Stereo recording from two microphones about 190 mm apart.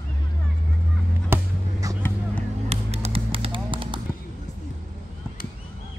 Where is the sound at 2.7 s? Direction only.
35° right (ahead or behind).